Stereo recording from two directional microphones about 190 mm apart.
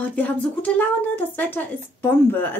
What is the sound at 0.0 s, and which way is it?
Speech, 10° left (ahead or behind).